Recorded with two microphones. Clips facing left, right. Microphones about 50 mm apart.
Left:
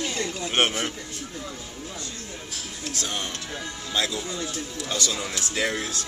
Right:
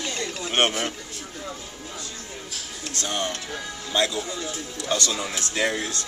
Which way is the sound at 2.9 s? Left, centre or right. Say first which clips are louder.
Right 4 dB; centre.